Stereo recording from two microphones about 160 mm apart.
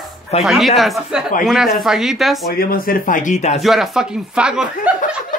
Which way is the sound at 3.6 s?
Centre (ahead or behind).